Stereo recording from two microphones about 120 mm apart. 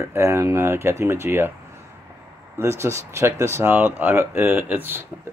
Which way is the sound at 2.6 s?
25° right (ahead or behind).